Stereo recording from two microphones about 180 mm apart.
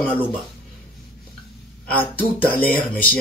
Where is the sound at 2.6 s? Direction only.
55° left (ahead or behind).